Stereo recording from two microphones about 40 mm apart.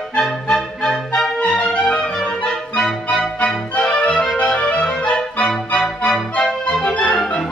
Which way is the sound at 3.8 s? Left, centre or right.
Centre.